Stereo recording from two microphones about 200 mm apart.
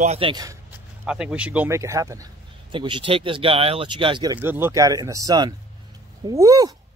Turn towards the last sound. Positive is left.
turn(degrees=-20)  # may be behind; listen again after turning